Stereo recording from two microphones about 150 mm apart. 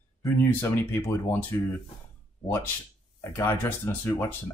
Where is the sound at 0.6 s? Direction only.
15° left (ahead or behind).